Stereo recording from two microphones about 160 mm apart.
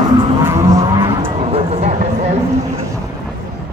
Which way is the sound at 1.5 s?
40° right (ahead or behind).